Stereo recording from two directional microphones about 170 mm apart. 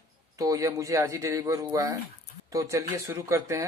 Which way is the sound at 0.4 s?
20° right (ahead or behind).